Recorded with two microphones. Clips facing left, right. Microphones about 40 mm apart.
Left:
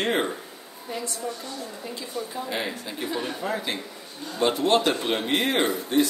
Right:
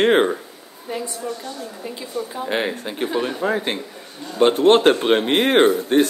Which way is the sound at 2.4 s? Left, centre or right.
Right.